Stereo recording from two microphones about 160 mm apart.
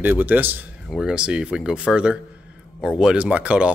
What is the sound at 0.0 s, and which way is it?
Speech, 10° right (ahead or behind).